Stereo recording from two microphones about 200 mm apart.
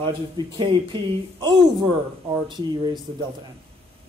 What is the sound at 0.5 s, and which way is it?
Speech, 25° right (ahead or behind).